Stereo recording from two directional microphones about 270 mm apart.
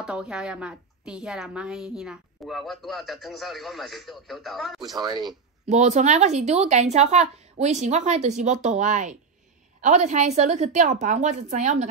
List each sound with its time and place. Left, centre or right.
0.0 s a woman's voice: centre
4.8 s speech: centre
5.7 s speech: right